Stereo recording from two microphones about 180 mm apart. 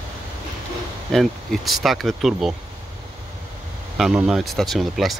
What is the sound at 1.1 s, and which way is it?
Speech, centre (ahead or behind).